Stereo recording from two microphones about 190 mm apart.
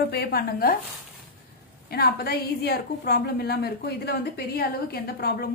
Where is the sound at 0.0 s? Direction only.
55° left (ahead or behind).